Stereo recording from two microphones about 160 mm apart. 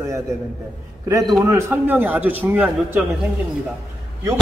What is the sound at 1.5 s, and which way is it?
A man's voice, 10° right (ahead or behind).